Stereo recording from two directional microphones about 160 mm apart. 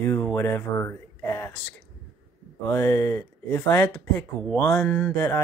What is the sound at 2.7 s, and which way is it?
Speech, 20° left (ahead or behind).